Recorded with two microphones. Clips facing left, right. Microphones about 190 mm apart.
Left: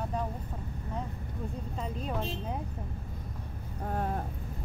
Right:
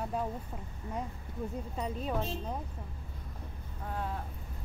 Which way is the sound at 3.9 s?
50° left (ahead or behind).